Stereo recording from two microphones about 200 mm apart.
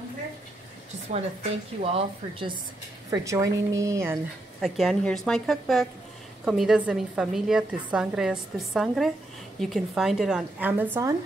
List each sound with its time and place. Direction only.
1.1 s a woman's voice: 30° right (ahead or behind); by 4.2 s 15° right (ahead or behind)
4.6 s a woman's voice: centre (ahead or behind)